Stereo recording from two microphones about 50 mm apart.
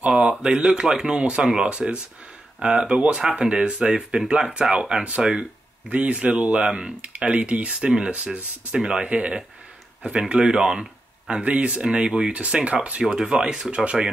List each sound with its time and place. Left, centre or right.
0.0 s speech: right
13.1 s speech: centre